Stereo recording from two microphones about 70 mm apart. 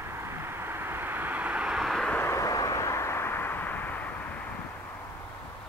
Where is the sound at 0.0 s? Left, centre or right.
Right; by 1.7 s centre.